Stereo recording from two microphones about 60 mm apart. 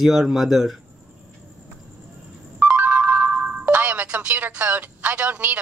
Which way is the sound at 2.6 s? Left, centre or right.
Right.